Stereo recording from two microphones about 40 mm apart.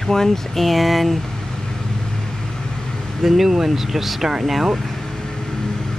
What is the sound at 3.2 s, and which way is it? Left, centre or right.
Speech, centre.